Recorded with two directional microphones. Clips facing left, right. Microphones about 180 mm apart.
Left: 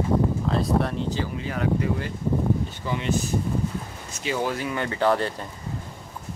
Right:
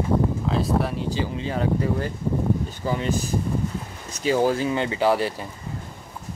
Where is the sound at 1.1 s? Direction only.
20° right (ahead or behind).